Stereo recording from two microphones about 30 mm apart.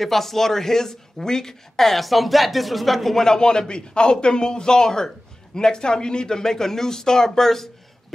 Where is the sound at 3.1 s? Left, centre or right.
Left.